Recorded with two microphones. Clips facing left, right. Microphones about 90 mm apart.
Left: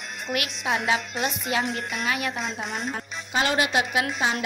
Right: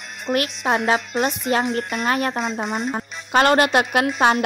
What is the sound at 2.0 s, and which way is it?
Speech, 40° right (ahead or behind).